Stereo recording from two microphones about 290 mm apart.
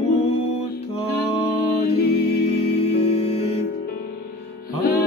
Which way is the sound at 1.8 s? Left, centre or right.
Left.